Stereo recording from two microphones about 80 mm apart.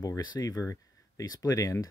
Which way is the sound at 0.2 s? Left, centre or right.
Left.